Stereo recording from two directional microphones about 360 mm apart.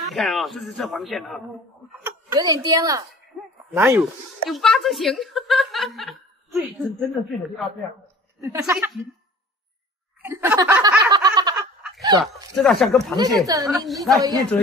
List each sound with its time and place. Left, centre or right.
0.1 s a woman's voice: centre
10.2 s a sound: centre
11.9 s fowl: centre
12.5 s speech: centre
13.1 s a woman's voice: centre